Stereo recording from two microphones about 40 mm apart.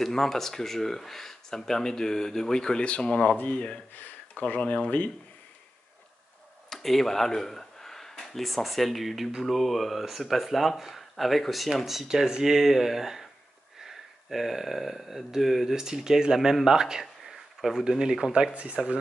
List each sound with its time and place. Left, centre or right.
0.0 s speech: centre; by 3.8 s left
3.9 s speech: left
6.8 s a sound: centre
8.6 s speech: centre
15.7 s speech: centre
16.6 s a sound: centre
17.8 s speech: centre
18.5 s speech: right